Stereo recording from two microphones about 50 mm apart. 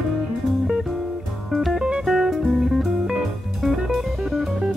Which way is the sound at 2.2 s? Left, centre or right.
Centre.